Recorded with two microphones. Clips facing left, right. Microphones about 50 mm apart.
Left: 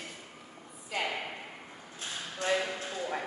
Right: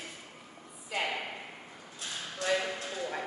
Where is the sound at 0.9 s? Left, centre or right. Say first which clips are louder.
Even; centre.